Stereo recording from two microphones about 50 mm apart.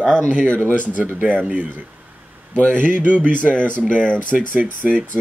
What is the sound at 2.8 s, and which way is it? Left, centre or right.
Speech, right.